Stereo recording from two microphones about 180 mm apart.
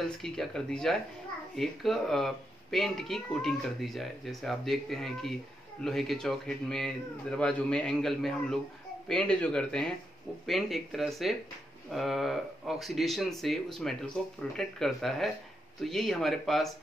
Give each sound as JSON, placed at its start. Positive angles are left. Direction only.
{"t": 0.2, "sound": "speech", "side_deg": 5}